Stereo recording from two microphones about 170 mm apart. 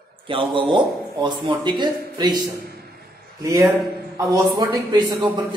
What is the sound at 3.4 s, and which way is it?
A man's voice, 20° right (ahead or behind).